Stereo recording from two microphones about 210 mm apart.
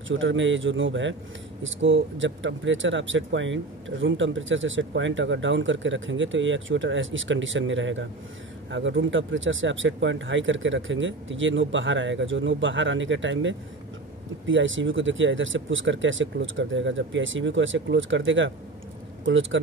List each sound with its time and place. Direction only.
0.1 s speech: 65° right (ahead or behind)